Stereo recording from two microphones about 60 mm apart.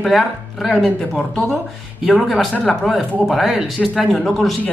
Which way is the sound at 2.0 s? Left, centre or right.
Centre.